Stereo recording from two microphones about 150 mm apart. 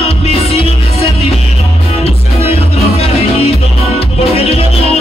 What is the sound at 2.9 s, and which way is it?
Music, 45° left (ahead or behind).